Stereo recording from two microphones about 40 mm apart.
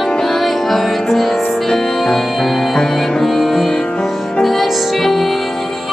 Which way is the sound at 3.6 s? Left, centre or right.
Centre.